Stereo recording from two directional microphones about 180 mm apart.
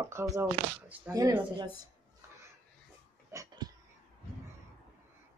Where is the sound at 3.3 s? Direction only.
20° right (ahead or behind).